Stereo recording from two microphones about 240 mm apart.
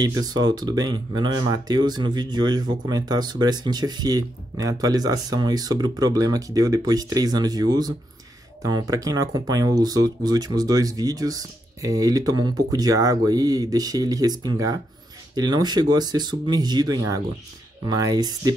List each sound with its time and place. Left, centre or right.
0.0 s speech: centre